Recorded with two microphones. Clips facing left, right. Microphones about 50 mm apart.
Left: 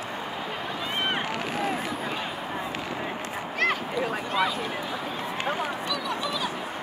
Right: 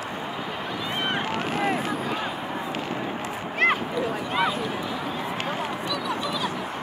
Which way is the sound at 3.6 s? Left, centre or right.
Right.